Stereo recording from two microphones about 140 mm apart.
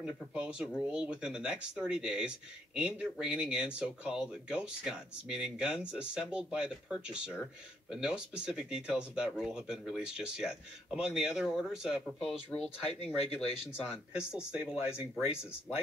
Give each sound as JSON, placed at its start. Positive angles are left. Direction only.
{"t": 0.0, "sound": "speech", "side_deg": -5}
{"t": 13.0, "sound": "speech", "side_deg": 45}
{"t": 13.8, "sound": "speech", "side_deg": -5}